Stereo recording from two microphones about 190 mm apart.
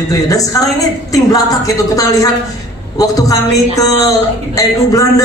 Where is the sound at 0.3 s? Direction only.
20° left (ahead or behind).